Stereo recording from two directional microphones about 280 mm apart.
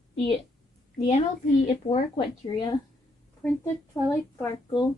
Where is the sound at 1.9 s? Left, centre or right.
Centre.